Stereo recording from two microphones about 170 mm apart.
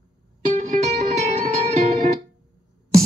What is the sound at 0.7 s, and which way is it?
Music, 40° right (ahead or behind).